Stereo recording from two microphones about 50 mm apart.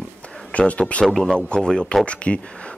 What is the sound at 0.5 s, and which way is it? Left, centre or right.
Speech, left.